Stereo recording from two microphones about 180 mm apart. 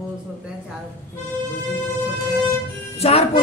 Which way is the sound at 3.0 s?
35° left (ahead or behind).